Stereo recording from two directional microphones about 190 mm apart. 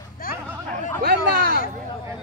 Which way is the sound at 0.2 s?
50° left (ahead or behind).